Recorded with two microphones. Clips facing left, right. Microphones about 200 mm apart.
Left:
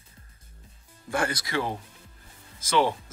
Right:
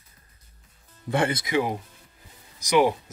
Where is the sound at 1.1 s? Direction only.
25° right (ahead or behind).